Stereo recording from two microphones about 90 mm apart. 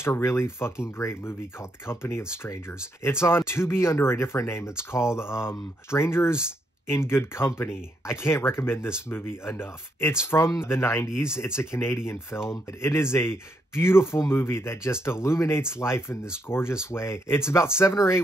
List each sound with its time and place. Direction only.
0.0 s speech: 30° left (ahead or behind)